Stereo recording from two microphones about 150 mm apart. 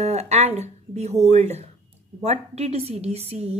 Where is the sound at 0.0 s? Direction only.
45° right (ahead or behind).